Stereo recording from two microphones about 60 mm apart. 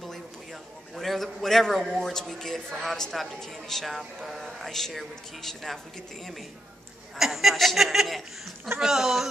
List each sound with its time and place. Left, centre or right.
0.0 s a man's voice: centre
7.2 s speech: centre